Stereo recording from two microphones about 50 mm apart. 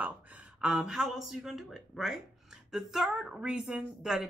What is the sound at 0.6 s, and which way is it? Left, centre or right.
Speech, centre.